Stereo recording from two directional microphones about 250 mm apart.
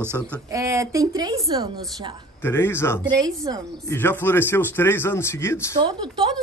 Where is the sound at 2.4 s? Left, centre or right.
Centre.